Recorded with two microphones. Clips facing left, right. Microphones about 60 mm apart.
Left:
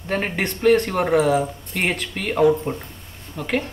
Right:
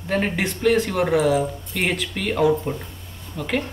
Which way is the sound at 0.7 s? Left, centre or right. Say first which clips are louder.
Left 1 dB; centre.